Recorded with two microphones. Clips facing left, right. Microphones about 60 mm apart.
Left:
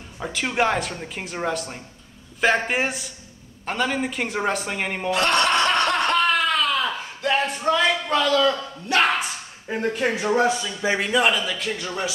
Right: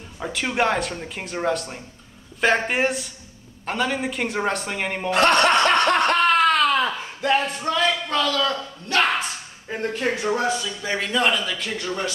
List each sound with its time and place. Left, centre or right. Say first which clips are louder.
0.2 s speech: even; centre
5.1 s snicker: right 3 dB; right
7.6 s a woman's voice: left 2 dB; centre